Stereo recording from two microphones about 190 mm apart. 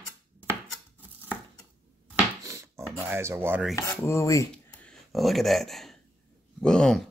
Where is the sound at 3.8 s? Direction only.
15° left (ahead or behind).